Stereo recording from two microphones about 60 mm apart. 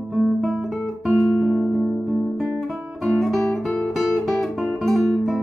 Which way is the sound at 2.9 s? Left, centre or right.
Centre.